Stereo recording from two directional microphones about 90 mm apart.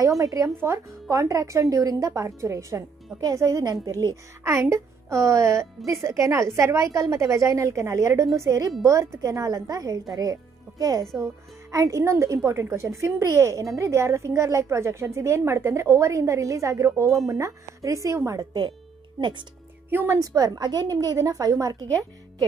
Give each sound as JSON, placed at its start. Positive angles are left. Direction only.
{"t": 0.2, "sound": "a woman's voice", "side_deg": -40}
{"t": 19.9, "sound": "a woman's voice", "side_deg": -20}
{"t": 20.2, "sound": "a woman's voice", "side_deg": -45}